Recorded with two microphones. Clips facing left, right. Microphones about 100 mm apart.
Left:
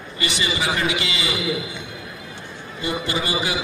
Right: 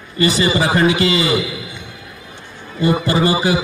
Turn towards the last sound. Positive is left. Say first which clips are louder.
# right 9 dB
turn(degrees=-40)  # may be behind; listen again after turning